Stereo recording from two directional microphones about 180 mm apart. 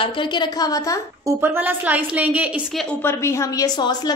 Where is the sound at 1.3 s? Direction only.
10° right (ahead or behind).